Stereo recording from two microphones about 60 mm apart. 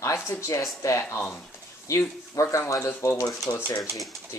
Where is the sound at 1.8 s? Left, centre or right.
Left.